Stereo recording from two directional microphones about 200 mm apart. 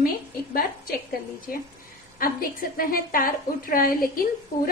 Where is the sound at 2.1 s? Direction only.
45° left (ahead or behind).